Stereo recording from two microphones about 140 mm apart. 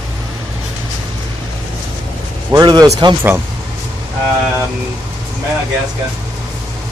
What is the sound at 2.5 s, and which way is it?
Speech, 25° right (ahead or behind).